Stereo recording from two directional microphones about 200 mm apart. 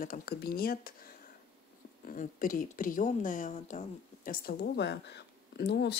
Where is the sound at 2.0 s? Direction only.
40° left (ahead or behind).